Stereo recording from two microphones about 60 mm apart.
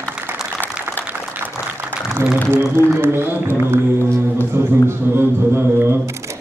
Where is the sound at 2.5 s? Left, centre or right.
Right.